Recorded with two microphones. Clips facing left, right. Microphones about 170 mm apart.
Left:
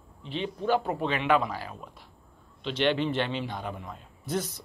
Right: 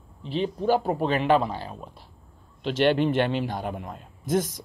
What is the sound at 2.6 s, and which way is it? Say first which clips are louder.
Speech: right 5 dB; 45° right (ahead or behind).